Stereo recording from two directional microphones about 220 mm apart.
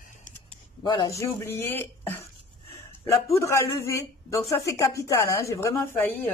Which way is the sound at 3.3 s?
15° left (ahead or behind).